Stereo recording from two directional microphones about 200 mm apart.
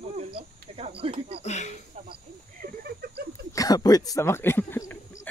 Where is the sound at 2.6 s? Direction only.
50° right (ahead or behind).